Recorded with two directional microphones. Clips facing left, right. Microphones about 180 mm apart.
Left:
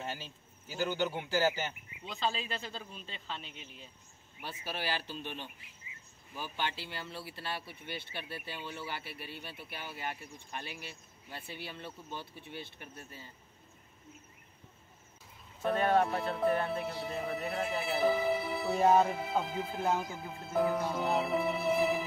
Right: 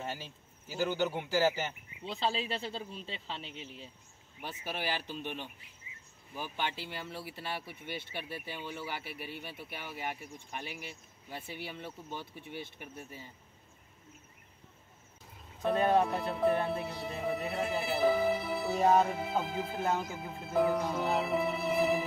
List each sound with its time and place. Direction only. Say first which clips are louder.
0.0 s speech: right 1 dB; 5° right (ahead or behind)
2.0 s speech: right 2 dB; 30° right (ahead or behind)
4.4 s speech: right 1 dB; 15° right (ahead or behind)
15.9 s speech: even; centre (ahead or behind)